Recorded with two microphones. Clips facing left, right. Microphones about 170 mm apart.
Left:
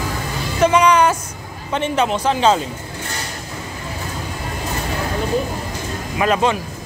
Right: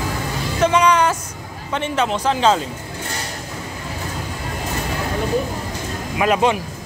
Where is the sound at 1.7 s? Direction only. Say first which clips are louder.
Left 2 dB; 20° left (ahead or behind).